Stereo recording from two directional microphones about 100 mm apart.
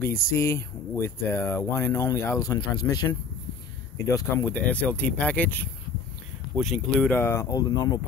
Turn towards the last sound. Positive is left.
turn(degrees=40)  # may be behind; listen again after turning